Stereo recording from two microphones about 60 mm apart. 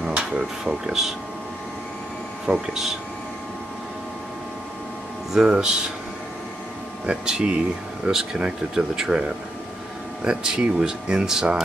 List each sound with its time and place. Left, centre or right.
0.0 s a sound: centre
0.4 s speech: centre
2.4 s speech: centre
5.3 s speech: centre
7.1 s speech: centre